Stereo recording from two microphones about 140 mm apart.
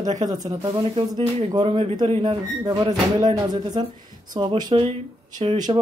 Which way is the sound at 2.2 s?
30° right (ahead or behind).